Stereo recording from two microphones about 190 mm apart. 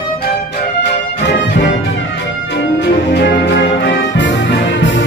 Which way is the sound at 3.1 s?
65° left (ahead or behind).